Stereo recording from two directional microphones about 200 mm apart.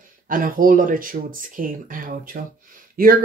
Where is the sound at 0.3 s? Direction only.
45° right (ahead or behind).